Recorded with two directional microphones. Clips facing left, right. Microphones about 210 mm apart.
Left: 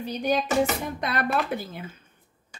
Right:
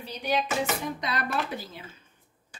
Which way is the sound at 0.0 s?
45° left (ahead or behind).